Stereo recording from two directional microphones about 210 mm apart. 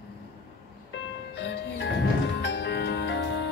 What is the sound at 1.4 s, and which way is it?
Music, 55° left (ahead or behind).